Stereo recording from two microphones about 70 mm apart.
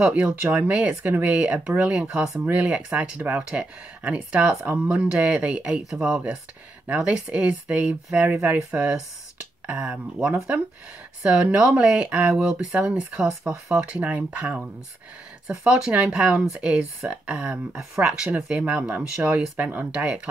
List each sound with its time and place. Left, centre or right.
0.0 s speech: centre
15.4 s speech: centre